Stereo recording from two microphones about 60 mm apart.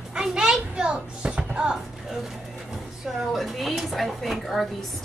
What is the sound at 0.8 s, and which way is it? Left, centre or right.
Music, centre.